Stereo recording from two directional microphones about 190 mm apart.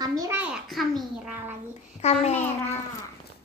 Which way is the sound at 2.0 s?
35° left (ahead or behind).